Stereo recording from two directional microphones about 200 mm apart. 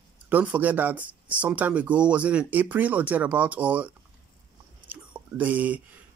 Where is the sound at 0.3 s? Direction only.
10° right (ahead or behind).